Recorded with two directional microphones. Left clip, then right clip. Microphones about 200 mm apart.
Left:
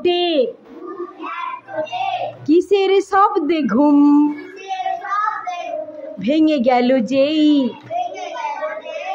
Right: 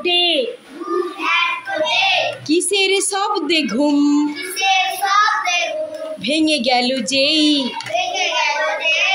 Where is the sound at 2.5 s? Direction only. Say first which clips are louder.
Left 3 dB; 10° left (ahead or behind).